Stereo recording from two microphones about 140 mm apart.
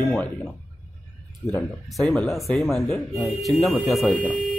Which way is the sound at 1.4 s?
Centre (ahead or behind).